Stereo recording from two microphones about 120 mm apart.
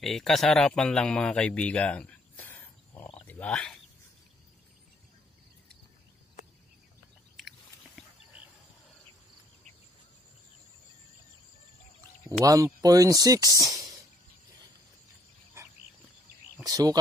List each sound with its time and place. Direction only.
0.0 s speech: centre (ahead or behind)
3.2 s a sound: 10° left (ahead or behind)
7.3 s biting: centre (ahead or behind)
12.4 s speech: 30° right (ahead or behind)
15.6 s a sound: 25° right (ahead or behind)
16.6 s speech: 30° right (ahead or behind)